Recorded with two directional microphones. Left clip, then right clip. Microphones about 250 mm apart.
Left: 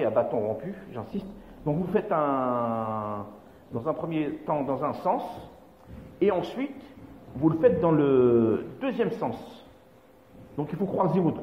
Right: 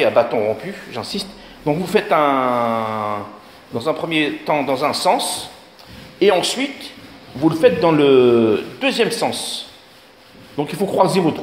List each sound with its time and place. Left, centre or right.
0.0 s speech: centre
10.5 s speech: centre